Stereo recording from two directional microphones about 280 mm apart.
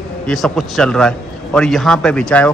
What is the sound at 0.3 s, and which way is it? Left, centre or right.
A man's voice, centre.